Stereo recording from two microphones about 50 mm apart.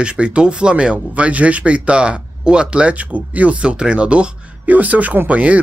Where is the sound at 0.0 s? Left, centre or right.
Right.